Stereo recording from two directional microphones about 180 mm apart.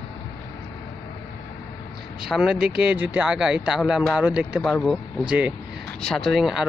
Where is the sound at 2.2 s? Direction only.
Centre (ahead or behind).